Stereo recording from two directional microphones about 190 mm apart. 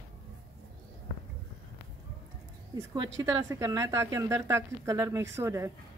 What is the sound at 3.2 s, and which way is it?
Speech, 20° right (ahead or behind).